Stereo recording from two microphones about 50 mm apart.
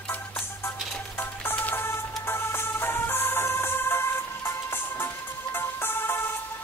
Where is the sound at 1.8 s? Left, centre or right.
Left.